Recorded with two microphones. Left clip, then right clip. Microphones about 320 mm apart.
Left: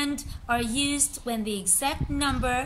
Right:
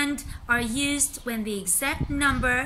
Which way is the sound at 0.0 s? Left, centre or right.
Centre.